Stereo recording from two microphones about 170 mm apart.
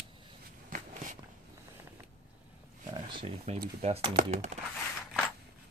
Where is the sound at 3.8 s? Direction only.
40° right (ahead or behind).